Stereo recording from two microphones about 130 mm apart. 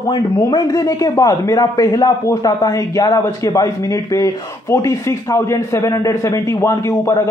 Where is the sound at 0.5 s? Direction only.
30° left (ahead or behind).